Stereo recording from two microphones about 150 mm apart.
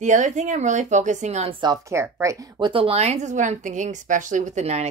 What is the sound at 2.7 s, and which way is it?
Speech, 40° right (ahead or behind).